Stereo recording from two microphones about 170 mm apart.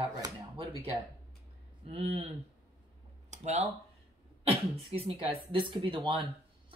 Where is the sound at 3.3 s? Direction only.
40° right (ahead or behind).